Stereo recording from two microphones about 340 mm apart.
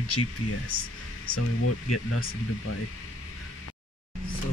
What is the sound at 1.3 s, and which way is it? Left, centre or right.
Speech, left.